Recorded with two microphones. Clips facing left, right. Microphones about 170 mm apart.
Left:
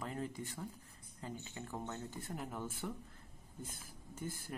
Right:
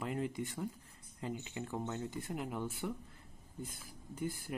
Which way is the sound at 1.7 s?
15° right (ahead or behind).